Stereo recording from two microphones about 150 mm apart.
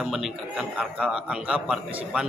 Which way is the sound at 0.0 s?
Centre (ahead or behind).